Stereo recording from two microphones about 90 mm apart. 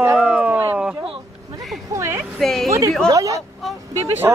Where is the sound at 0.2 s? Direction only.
10° right (ahead or behind).